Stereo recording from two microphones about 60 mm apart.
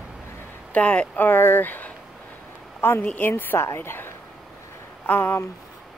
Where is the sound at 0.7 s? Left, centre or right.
Left.